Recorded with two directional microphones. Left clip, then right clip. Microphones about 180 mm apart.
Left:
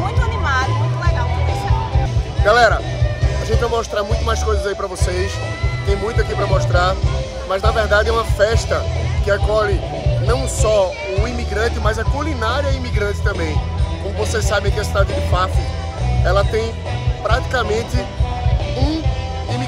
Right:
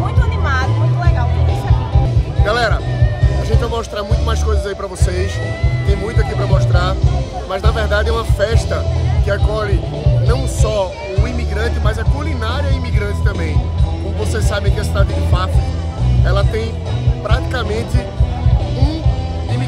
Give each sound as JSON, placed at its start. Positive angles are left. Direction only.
{"t": 0.5, "sound": "music", "side_deg": -15}
{"t": 2.4, "sound": "music", "side_deg": 5}
{"t": 3.4, "sound": "speech", "side_deg": 0}